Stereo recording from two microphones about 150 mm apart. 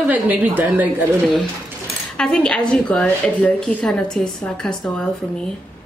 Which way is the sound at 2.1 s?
5° left (ahead or behind).